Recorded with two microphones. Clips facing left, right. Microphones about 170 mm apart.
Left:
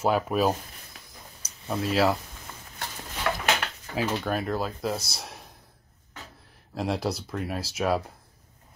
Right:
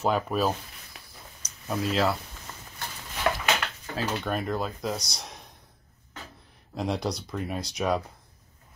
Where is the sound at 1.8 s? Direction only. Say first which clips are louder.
Left 2 dB; centre (ahead or behind).